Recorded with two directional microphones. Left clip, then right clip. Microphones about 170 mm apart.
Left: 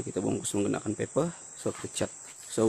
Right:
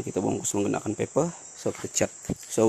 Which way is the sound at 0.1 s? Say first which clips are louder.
Right 4 dB; 5° right (ahead or behind).